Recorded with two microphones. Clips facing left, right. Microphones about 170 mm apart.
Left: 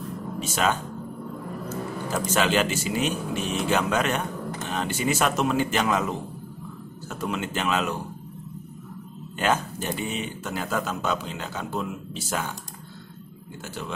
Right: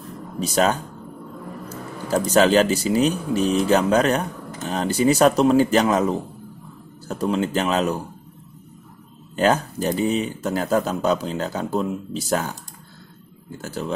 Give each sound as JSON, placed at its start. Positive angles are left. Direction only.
{"t": 0.4, "sound": "speech", "side_deg": -40}
{"t": 2.0, "sound": "speech", "side_deg": -35}
{"t": 9.4, "sound": "speech", "side_deg": -40}
{"t": 13.6, "sound": "speech", "side_deg": -35}